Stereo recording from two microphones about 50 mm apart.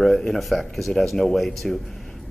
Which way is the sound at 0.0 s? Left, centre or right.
Centre.